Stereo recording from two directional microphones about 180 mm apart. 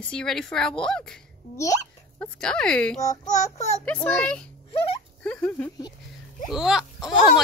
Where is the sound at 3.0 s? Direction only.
20° left (ahead or behind).